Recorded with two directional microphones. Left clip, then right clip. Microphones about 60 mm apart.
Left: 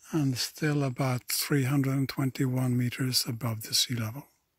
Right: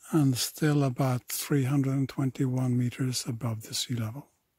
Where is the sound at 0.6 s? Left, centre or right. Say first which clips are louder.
Right 3 dB; right.